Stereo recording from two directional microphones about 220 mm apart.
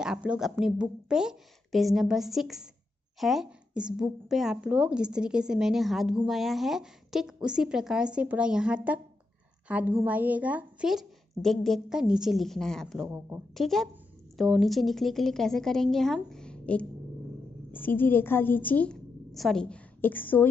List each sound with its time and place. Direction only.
0.0 s a woman's voice: 5° right (ahead or behind)